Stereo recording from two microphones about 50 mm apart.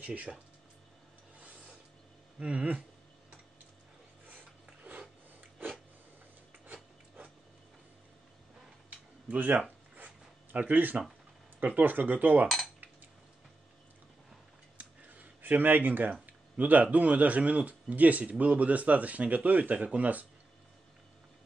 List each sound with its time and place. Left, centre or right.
0.0 s speech: right
2.3 s speech: right
4.3 s a sound: right
9.3 s speech: right
10.0 s zipper: right
11.6 s speech: right
14.8 s a sound: right
16.3 s speech: right